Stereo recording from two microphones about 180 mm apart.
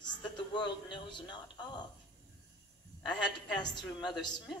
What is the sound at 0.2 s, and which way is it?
Speech, 25° left (ahead or behind).